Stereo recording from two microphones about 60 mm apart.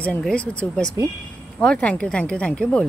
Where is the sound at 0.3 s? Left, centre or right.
Centre.